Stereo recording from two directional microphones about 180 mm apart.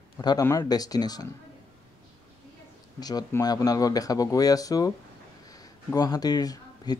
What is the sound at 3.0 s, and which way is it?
A man's voice, 20° left (ahead or behind).